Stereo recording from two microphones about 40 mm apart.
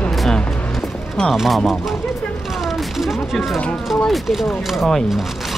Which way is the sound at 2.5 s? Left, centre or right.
Centre.